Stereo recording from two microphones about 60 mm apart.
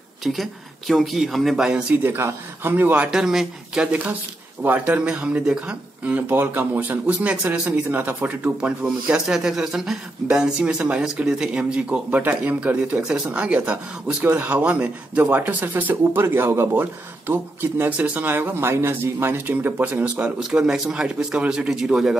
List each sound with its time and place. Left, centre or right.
0.2 s speech: centre
1.7 s speech: centre
2.1 s speech: right
2.7 s speech: right
3.1 s speech: centre
3.9 s speech: right
8.5 s speech: centre
14.2 s speech: right
14.5 s speech: right
18.3 s speech: right
20.3 s speech: centre